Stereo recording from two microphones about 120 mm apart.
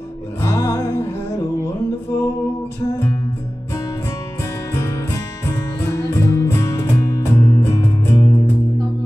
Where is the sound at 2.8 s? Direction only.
35° left (ahead or behind).